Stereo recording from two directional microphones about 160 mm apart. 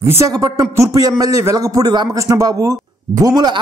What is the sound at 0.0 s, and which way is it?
A man's voice, 15° right (ahead or behind).